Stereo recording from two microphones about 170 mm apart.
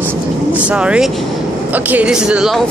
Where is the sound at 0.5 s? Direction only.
5° right (ahead or behind).